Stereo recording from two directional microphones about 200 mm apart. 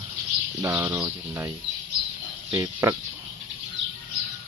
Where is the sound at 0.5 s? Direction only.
15° right (ahead or behind).